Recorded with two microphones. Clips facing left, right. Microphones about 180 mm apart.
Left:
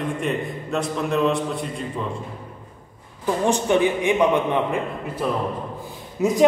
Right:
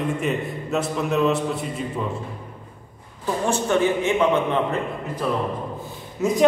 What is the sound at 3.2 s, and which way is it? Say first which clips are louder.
A man's voice: left 2 dB; 15° left (ahead or behind).